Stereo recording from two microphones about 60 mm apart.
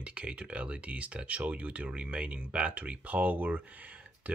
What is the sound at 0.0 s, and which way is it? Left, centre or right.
Speech, right.